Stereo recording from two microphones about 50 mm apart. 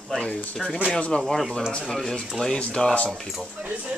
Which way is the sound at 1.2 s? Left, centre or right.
Centre.